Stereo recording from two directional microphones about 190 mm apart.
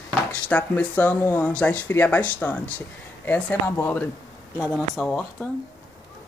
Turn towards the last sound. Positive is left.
turn(degrees=10)  # may be behind; listen again after turning